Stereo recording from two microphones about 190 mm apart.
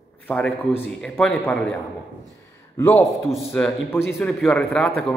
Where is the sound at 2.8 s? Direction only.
10° left (ahead or behind).